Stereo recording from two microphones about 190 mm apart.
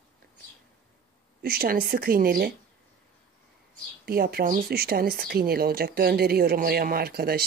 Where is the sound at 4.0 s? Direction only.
55° right (ahead or behind).